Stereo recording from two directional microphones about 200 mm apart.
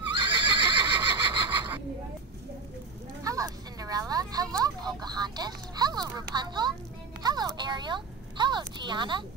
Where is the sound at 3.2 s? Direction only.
15° right (ahead or behind).